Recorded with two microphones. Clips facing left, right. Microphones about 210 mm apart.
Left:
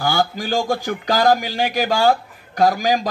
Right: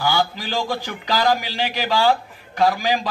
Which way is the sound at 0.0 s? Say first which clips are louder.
Left 2 dB; 45° left (ahead or behind).